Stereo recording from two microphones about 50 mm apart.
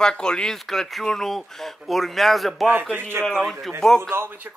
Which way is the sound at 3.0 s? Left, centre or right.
Right.